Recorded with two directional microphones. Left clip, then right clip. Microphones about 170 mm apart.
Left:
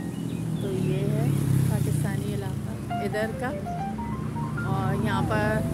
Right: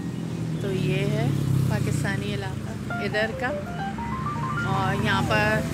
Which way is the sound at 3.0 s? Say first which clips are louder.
Right 4 dB; 20° left (ahead or behind).